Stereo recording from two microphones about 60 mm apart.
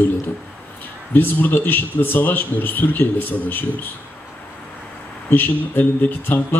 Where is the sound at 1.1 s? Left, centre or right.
Left.